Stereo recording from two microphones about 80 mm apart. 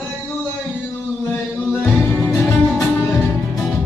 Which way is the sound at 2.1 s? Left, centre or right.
Left.